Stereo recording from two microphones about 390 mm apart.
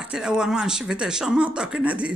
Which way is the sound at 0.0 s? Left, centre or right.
Centre.